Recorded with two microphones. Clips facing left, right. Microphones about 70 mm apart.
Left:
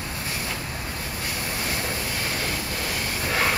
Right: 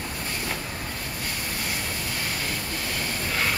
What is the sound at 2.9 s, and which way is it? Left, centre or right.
Train, centre.